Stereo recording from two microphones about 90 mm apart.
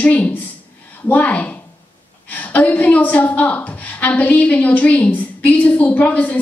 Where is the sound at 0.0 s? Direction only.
15° left (ahead or behind).